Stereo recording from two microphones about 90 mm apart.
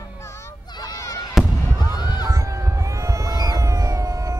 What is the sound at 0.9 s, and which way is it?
Fireworks, 35° left (ahead or behind).